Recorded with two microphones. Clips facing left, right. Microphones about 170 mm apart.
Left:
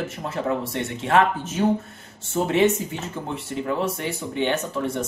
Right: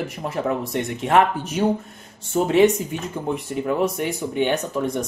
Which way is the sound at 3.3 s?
15° right (ahead or behind).